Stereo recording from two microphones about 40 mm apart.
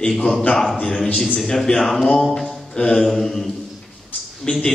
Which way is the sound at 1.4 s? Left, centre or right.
Centre.